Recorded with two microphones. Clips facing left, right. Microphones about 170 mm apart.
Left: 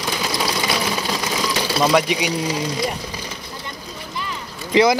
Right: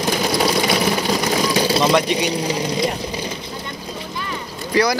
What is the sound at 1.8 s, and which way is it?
Speech, 5° left (ahead or behind).